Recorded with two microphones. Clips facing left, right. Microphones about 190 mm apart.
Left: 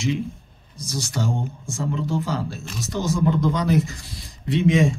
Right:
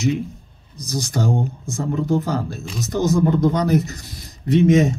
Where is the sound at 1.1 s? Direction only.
45° right (ahead or behind).